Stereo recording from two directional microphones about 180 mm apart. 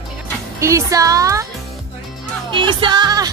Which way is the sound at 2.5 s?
25° right (ahead or behind).